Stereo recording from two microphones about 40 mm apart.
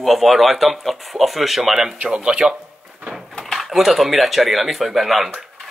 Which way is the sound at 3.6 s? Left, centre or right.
Centre.